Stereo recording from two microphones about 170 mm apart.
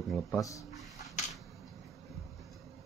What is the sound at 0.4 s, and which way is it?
Speech, 20° left (ahead or behind).